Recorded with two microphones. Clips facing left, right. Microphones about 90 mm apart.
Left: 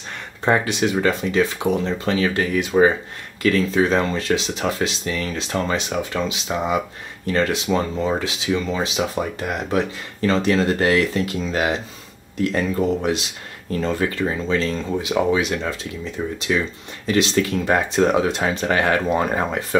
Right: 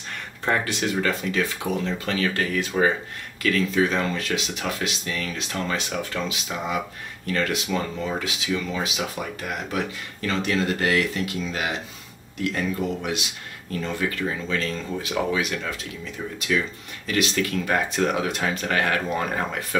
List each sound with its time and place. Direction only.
0.5 s speech: 20° left (ahead or behind)
3.4 s speech: 30° left (ahead or behind)